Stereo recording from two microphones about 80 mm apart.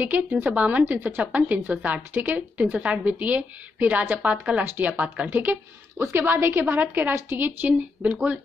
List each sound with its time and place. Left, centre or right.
0.0 s a woman's voice: centre